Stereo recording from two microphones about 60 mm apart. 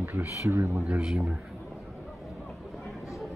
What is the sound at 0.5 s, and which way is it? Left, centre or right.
Speech, right.